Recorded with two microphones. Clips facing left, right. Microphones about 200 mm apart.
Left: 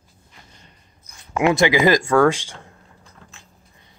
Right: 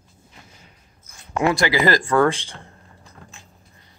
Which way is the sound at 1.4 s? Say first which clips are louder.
Left 3 dB; 20° left (ahead or behind).